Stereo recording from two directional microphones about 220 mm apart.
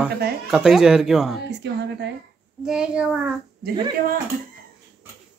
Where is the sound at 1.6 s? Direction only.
50° right (ahead or behind).